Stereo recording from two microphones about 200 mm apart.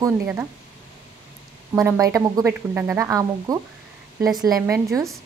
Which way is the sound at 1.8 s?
15° right (ahead or behind).